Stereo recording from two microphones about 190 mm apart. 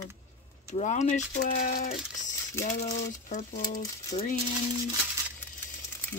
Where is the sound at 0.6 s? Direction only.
40° left (ahead or behind).